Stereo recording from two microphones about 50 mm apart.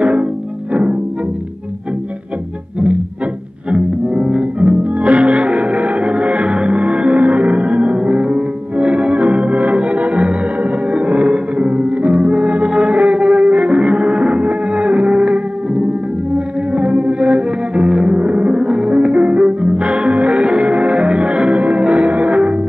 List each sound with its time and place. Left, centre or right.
0.0 s music: right
3.7 s music: right
12.1 s music: centre
12.4 s music: right